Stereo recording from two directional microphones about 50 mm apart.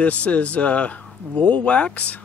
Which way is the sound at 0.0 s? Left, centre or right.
Left.